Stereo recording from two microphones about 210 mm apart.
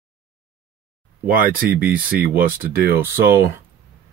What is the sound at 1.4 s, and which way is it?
Speech, 45° right (ahead or behind).